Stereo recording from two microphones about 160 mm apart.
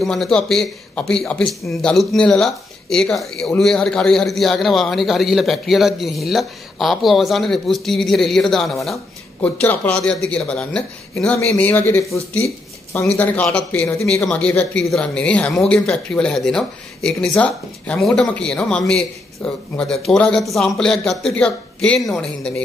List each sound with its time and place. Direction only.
0.0 s speech: 5° left (ahead or behind)